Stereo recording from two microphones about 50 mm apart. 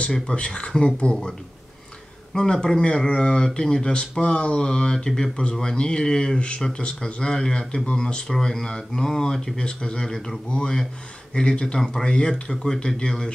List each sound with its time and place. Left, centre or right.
0.1 s speech: centre
2.3 s speech: centre
10.0 s speech: centre
10.5 s speech: centre